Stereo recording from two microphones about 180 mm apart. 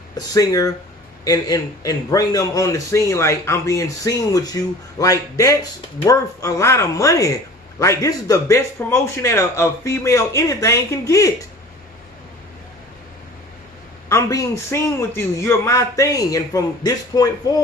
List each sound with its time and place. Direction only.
0.1 s a man's voice: 20° left (ahead or behind)
14.0 s speech: 15° left (ahead or behind)